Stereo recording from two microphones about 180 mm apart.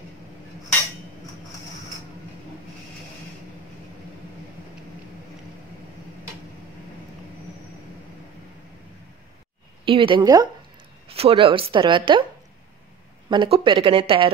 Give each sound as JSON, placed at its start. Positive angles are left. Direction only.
{"t": 9.8, "sound": "speech", "side_deg": -30}
{"t": 11.1, "sound": "speech", "side_deg": -30}
{"t": 13.3, "sound": "speech", "side_deg": -25}